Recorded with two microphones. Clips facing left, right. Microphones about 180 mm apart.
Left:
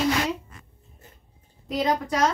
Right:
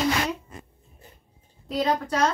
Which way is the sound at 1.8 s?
10° left (ahead or behind).